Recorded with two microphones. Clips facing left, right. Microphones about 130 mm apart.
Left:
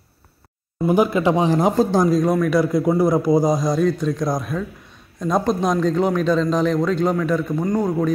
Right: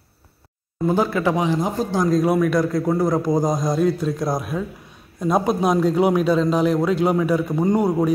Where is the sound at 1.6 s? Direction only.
90° left.